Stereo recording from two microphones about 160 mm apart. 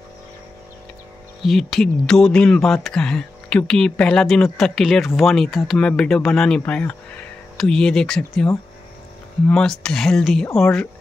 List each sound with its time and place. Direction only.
1.4 s speech: centre (ahead or behind)
9.5 s speech: 5° left (ahead or behind)